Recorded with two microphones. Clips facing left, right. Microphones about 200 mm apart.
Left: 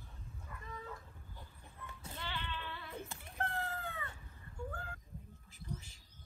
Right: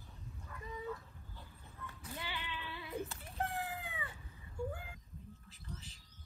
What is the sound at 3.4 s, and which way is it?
Cat, 15° right (ahead or behind).